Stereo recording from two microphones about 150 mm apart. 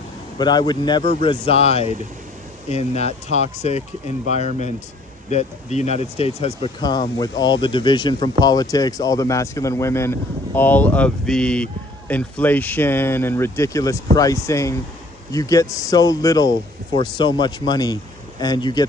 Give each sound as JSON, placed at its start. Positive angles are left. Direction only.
{"t": 0.4, "sound": "speech", "side_deg": 30}
{"t": 5.3, "sound": "speech", "side_deg": 50}
{"t": 6.8, "sound": "speech", "side_deg": 25}